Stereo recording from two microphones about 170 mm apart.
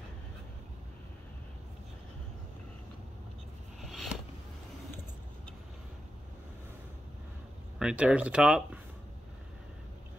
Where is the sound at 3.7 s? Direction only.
Centre (ahead or behind).